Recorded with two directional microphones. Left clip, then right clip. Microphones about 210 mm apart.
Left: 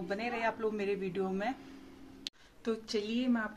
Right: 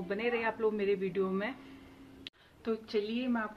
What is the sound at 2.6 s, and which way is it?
Speech, centre (ahead or behind).